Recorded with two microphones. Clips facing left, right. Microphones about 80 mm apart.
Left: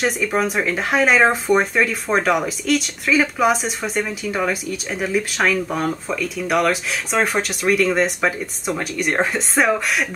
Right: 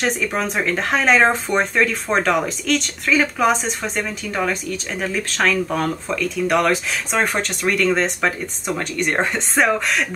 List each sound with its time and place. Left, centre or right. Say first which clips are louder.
0.0 s speech: left 2 dB; centre